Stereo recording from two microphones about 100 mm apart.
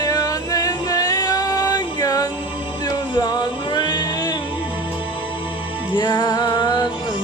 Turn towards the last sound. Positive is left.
turn(degrees=50)  # may be behind; listen again after turning